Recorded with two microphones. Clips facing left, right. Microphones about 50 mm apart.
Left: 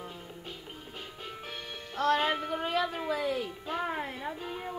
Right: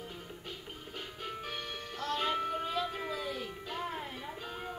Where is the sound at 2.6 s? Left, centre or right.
Left.